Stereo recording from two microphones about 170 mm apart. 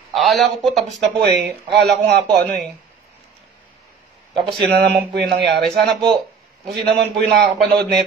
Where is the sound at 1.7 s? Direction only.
75° right (ahead or behind).